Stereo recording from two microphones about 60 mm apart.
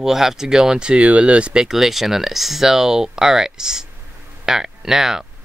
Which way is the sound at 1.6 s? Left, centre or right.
Centre.